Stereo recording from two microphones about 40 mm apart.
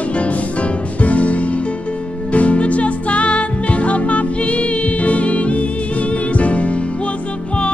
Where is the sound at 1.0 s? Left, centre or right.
Left.